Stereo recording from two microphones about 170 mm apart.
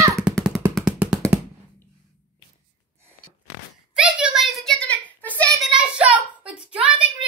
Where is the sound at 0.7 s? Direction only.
Centre (ahead or behind).